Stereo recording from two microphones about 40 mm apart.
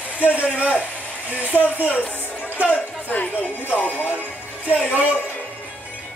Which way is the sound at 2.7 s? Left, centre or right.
Left.